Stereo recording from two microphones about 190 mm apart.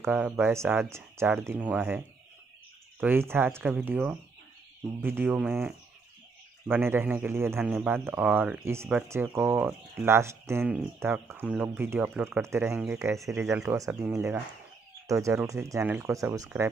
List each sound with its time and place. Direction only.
0.0 s speech: 10° right (ahead or behind)